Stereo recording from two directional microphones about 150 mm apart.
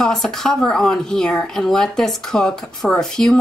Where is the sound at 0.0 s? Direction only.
5° left (ahead or behind).